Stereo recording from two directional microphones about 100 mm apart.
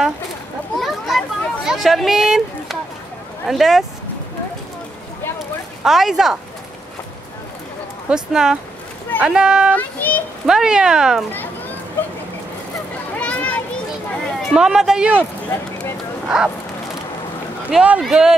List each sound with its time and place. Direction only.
0.7 s children playing: centre (ahead or behind)
3.4 s speech: 5° right (ahead or behind)
5.9 s speech: 5° right (ahead or behind)
8.1 s speech: 5° right (ahead or behind)
9.8 s a child's voice: 15° left (ahead or behind)
10.4 s speech: 5° right (ahead or behind)
13.2 s a sound: 15° left (ahead or behind)
14.2 s speech: centre (ahead or behind)
16.3 s speech: 10° right (ahead or behind)
17.6 s speech: 10° right (ahead or behind)